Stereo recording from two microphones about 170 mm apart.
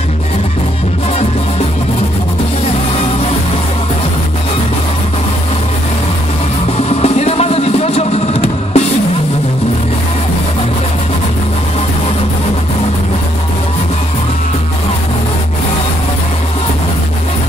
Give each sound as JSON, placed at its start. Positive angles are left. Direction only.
{"t": 7.0, "sound": "music", "side_deg": 35}